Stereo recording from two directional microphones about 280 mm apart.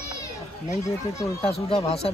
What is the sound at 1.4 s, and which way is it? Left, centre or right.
Speech, centre.